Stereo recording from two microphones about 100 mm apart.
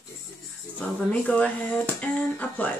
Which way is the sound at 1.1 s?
15° left (ahead or behind).